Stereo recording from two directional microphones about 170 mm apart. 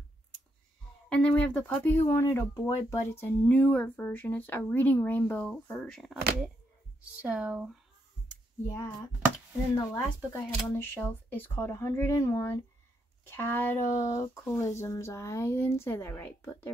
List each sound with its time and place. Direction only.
1.0 s speech: 5° left (ahead or behind)
7.2 s speech: 5° right (ahead or behind)
8.3 s a sound: 10° left (ahead or behind)
10.3 s speech: 10° left (ahead or behind)